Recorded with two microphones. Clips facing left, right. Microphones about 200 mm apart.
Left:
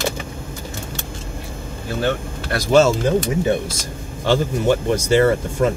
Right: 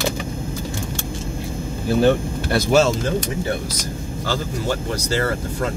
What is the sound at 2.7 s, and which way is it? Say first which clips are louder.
Speech: left 4 dB; centre (ahead or behind).